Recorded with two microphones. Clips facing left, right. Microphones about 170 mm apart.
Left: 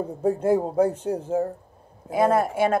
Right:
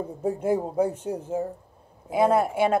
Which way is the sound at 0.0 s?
60° left (ahead or behind).